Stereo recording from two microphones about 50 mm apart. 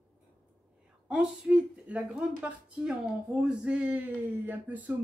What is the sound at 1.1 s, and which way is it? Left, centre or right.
A woman's voice, right.